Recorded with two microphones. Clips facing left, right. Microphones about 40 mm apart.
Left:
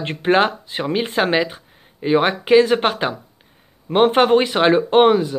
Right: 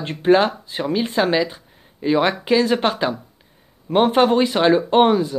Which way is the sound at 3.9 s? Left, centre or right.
Left.